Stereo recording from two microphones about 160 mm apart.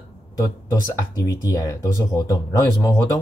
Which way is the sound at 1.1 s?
20° left (ahead or behind).